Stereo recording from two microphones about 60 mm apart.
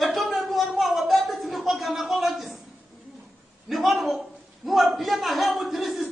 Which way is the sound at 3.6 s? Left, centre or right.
Centre.